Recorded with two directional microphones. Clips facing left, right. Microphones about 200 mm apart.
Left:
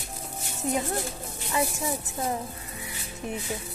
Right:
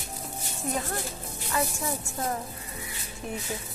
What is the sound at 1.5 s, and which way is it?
Speech, 15° left (ahead or behind).